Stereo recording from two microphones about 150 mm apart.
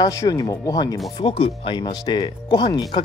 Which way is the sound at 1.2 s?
40° left (ahead or behind).